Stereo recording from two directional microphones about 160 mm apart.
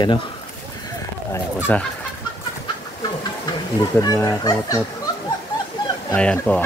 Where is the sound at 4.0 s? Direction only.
20° left (ahead or behind).